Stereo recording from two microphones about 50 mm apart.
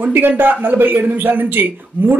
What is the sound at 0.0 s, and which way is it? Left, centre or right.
Speech, right.